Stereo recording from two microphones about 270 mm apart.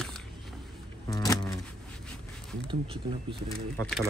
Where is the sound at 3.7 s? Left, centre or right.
Centre.